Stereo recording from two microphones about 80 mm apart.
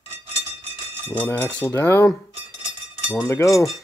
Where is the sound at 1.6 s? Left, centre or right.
Left.